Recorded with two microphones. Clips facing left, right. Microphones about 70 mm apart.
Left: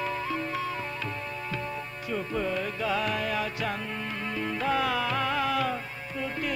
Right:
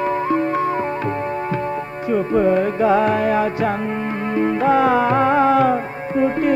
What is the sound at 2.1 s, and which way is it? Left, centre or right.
Music, right.